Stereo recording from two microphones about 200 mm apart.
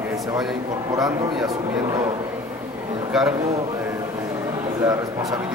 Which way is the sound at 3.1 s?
5° right (ahead or behind).